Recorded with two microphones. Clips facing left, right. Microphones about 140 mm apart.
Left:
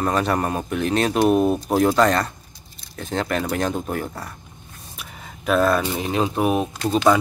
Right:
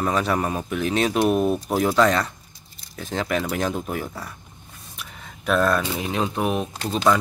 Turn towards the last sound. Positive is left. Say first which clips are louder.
# left 3 dB
turn(degrees=5)  # may be behind; listen again after turning